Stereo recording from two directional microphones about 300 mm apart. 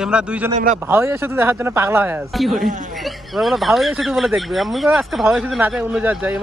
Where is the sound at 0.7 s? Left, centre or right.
Centre.